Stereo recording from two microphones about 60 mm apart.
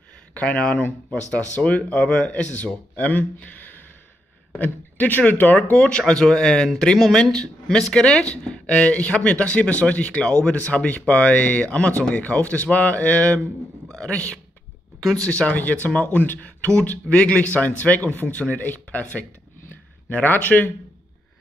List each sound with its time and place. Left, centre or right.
0.3 s speech: left
13.8 s a man's voice: centre
14.1 s speech: left